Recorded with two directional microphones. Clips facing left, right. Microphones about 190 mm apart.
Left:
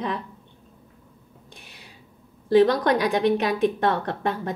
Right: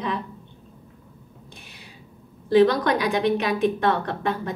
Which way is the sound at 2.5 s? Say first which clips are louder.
Even; 45° left (ahead or behind).